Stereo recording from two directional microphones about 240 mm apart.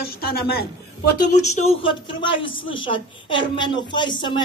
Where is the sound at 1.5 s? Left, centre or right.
Left.